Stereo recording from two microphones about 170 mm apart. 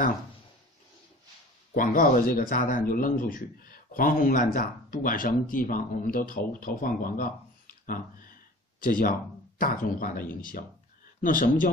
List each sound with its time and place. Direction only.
1.7 s speech: 55° left (ahead or behind)